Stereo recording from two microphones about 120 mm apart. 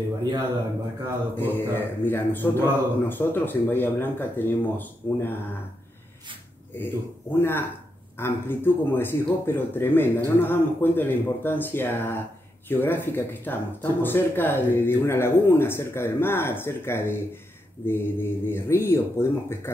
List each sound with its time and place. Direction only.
1.3 s speech: 15° left (ahead or behind)
6.8 s speech: 15° left (ahead or behind)